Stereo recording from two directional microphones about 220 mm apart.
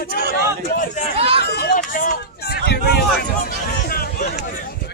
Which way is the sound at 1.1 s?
25° right (ahead or behind).